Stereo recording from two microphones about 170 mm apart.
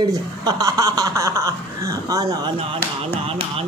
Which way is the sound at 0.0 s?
20° right (ahead or behind).